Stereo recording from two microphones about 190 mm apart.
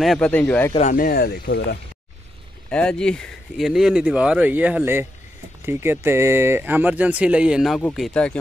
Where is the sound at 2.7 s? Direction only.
5° left (ahead or behind).